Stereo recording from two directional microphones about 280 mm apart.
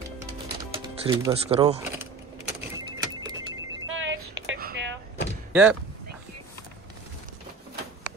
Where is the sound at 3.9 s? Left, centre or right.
Right.